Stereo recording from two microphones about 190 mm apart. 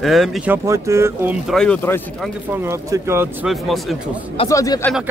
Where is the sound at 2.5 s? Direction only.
15° right (ahead or behind).